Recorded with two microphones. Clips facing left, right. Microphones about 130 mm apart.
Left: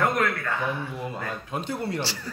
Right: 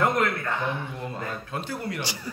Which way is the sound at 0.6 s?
5° left (ahead or behind).